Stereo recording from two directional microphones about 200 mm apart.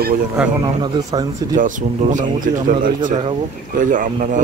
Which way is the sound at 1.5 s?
40° right (ahead or behind).